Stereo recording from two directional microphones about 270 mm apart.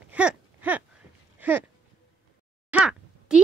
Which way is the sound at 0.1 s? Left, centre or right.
Centre.